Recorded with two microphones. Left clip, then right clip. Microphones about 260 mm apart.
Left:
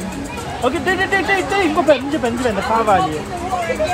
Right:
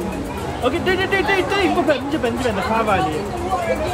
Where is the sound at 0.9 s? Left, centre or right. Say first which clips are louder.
Left 2 dB; centre.